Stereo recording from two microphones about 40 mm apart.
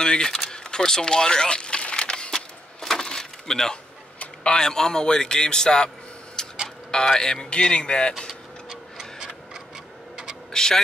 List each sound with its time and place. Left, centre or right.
0.0 s speech: centre
0.5 s a sound: centre
2.3 s a sound: centre
4.4 s a man's voice: centre
6.4 s tick-tock: centre
6.9 s speech: centre
8.6 s clock: centre
10.5 s speech: centre